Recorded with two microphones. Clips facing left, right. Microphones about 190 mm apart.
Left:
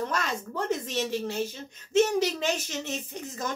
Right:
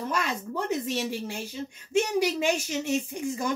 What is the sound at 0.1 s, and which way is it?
Speech, 10° right (ahead or behind).